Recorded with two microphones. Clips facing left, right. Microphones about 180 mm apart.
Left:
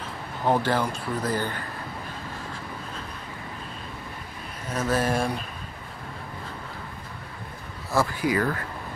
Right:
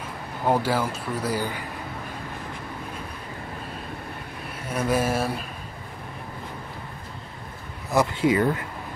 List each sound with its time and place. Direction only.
0.5 s speech: 10° right (ahead or behind)
4.6 s speech: 10° right (ahead or behind)
7.9 s speech: 20° right (ahead or behind)